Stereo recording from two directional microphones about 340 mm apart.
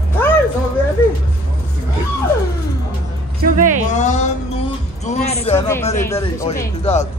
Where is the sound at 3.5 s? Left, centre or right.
Right.